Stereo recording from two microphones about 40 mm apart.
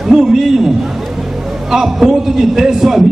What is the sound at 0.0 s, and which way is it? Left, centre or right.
Speech, centre.